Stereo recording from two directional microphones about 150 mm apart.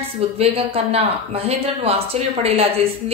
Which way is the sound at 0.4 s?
40° right (ahead or behind).